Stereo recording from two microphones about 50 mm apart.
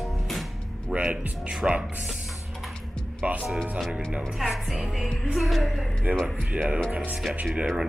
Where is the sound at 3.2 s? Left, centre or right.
Right.